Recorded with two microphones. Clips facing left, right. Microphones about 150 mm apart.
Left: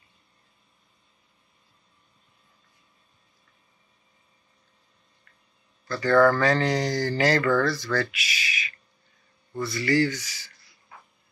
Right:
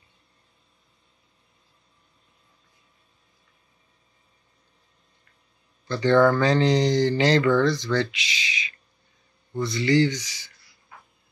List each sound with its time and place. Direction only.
5.9 s speech: 25° right (ahead or behind)